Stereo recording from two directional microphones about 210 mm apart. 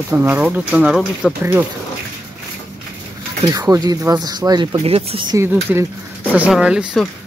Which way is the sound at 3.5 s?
20° right (ahead or behind).